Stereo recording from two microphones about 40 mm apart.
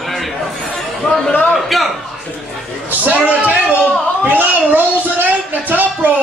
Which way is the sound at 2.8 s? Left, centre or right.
Right.